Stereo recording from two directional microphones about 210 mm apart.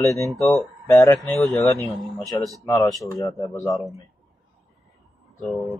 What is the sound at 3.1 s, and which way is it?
Speech, 15° left (ahead or behind).